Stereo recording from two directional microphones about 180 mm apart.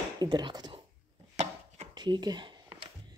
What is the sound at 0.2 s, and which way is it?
Speech, 25° right (ahead or behind).